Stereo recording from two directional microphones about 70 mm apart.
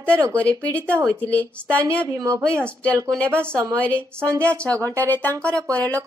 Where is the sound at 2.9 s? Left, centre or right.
Right.